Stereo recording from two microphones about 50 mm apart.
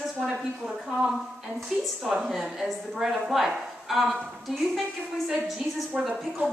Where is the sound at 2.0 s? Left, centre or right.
Centre.